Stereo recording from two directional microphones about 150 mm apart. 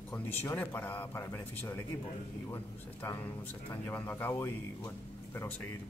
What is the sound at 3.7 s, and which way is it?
Speech, 15° left (ahead or behind).